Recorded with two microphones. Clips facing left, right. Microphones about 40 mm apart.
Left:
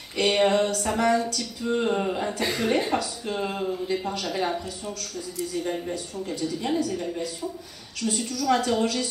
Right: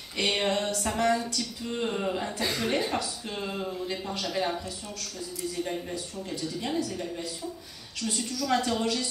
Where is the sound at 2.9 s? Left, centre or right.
Centre.